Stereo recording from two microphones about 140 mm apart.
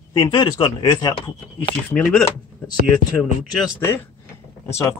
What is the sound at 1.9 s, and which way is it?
Speech, 10° left (ahead or behind).